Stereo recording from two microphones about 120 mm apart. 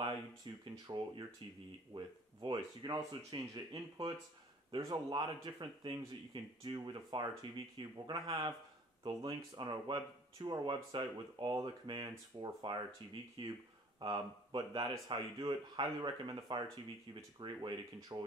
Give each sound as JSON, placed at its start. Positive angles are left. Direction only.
{"t": 0.5, "sound": "speech", "side_deg": -40}